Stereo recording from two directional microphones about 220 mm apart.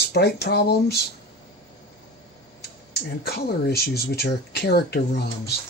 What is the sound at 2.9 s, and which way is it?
Speech, 45° left (ahead or behind).